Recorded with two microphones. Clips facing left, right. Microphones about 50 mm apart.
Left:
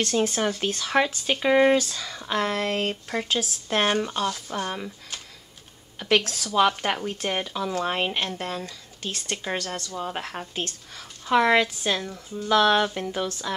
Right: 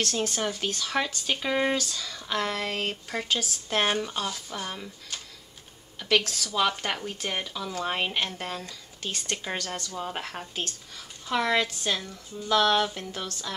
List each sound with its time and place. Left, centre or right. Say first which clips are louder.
0.0 s speech: left 5 dB; centre
5.9 s a woman's voice: left 2 dB; centre
7.7 s speech: left 2 dB; centre